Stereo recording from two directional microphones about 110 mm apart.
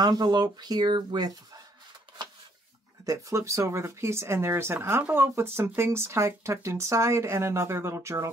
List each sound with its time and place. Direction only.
0.0 s speech: 35° right (ahead or behind)
3.1 s speech: 30° right (ahead or behind)